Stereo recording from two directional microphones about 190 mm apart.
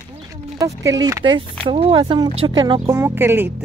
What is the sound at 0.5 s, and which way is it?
Speech, 15° right (ahead or behind).